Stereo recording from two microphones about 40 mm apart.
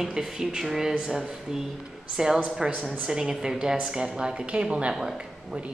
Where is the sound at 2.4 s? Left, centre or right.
Centre.